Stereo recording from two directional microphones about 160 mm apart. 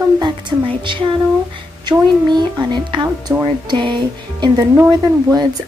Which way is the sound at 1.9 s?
30° right (ahead or behind).